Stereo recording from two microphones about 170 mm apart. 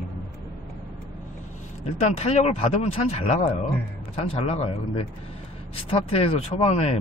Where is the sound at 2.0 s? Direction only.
40° left (ahead or behind).